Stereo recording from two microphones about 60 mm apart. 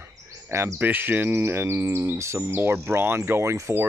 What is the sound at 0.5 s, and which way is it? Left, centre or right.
Speech, right.